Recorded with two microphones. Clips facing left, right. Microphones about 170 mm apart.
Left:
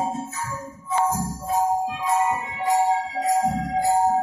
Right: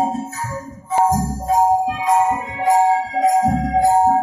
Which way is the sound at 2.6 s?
60° right (ahead or behind).